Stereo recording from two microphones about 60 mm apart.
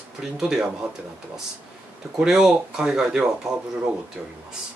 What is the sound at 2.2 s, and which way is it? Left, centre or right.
Speech, centre.